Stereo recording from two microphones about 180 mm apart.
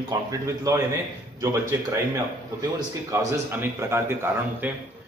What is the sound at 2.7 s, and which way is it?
A man's voice, 15° right (ahead or behind).